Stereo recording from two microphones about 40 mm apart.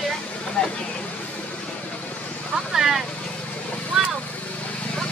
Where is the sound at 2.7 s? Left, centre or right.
Centre.